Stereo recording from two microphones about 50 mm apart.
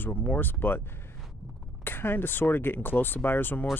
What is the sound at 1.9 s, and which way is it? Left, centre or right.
Speech, left.